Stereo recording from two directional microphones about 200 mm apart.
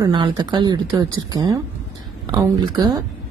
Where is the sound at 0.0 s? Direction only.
25° right (ahead or behind).